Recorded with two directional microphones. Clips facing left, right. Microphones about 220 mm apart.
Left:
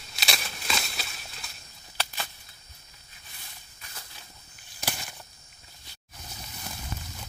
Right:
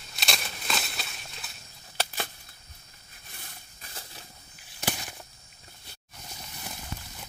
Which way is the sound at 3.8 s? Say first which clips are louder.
Right 3 dB; 30° right (ahead or behind).